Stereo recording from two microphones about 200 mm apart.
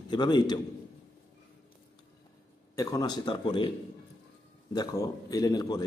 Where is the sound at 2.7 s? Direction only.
15° left (ahead or behind).